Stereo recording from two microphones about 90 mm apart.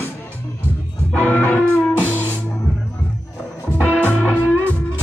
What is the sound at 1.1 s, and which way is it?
Music, 20° left (ahead or behind).